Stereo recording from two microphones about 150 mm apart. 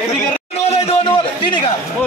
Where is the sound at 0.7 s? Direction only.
40° left (ahead or behind).